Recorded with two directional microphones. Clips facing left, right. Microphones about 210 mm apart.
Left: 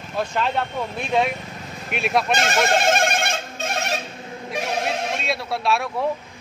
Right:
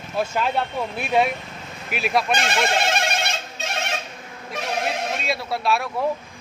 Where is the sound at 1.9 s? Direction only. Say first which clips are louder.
Left 1 dB; centre (ahead or behind).